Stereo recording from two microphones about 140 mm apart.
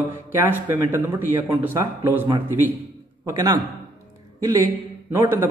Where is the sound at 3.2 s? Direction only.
25° right (ahead or behind).